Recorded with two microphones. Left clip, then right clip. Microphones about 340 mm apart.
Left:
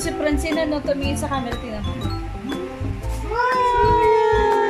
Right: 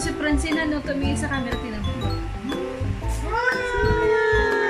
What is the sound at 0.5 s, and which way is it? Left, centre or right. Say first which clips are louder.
Speech: left 3 dB; centre.